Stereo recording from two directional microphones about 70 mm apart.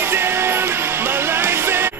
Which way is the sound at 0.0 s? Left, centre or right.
Right.